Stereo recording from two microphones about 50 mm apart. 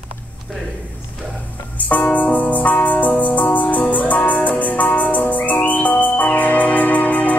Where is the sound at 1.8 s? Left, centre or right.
Left.